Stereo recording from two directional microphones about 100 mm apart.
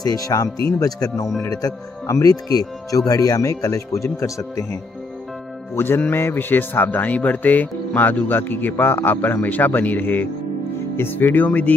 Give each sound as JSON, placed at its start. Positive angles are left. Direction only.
{"t": 0.0, "sound": "speech", "side_deg": 35}
{"t": 5.8, "sound": "speech", "side_deg": 20}